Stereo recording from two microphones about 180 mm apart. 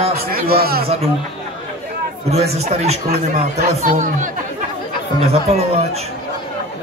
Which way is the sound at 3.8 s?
45° right (ahead or behind).